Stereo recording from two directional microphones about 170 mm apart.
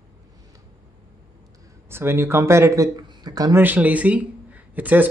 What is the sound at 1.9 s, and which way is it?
Speech, 15° right (ahead or behind).